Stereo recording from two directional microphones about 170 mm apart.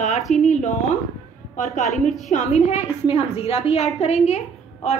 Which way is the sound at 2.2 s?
45° left (ahead or behind).